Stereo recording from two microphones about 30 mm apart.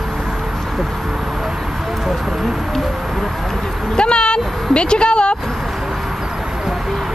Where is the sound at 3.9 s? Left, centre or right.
Left.